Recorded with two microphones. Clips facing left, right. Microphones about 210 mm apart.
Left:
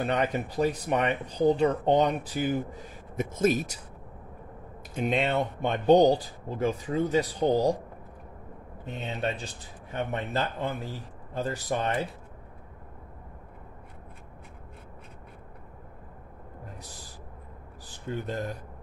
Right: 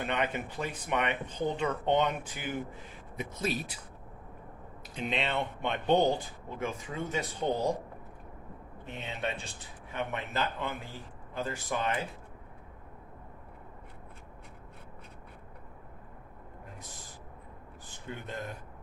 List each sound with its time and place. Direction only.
0.0 s speech: 40° left (ahead or behind)
4.9 s speech: 45° left (ahead or behind)
9.0 s speech: 35° left (ahead or behind)
16.8 s owl: 35° left (ahead or behind)
17.8 s speech: 40° left (ahead or behind)